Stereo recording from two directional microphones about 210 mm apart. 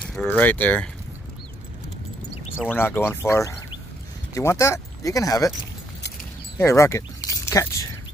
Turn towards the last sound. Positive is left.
turn(degrees=15)  # may be behind; listen again after turning